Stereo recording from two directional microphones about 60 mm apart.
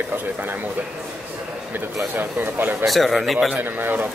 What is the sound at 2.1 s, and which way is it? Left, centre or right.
Speech, right.